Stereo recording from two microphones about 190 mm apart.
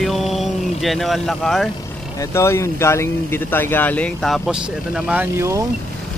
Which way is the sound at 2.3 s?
15° left (ahead or behind).